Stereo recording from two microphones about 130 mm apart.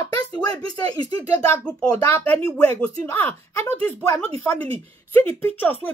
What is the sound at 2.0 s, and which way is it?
Speech, 20° left (ahead or behind).